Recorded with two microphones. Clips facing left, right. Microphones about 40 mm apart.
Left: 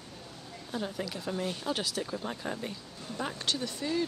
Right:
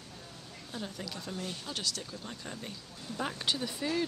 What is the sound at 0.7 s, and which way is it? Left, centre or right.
Speech, centre.